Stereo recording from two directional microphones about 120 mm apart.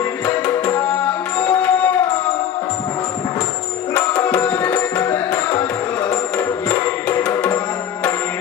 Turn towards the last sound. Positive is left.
turn(degrees=15)  # may be behind; listen again after turning